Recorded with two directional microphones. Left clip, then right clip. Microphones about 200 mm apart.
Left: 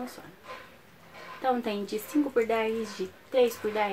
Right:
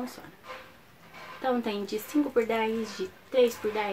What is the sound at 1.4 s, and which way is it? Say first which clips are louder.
Speech: left 1 dB; 5° right (ahead or behind).